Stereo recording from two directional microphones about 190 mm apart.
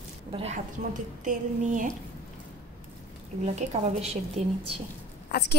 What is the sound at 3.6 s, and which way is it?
Speech, 35° right (ahead or behind).